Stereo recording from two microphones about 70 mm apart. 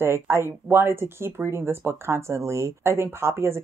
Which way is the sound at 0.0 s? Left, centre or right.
Right.